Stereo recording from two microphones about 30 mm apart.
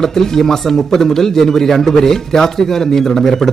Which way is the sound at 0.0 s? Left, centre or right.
Centre.